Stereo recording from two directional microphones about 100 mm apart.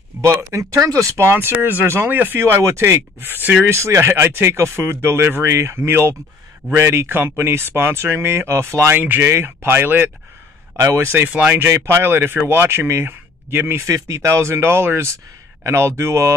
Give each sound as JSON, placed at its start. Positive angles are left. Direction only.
{"t": 0.2, "sound": "speech", "side_deg": -30}
{"t": 11.2, "sound": "speech", "side_deg": -15}
{"t": 11.7, "sound": "speech", "side_deg": -25}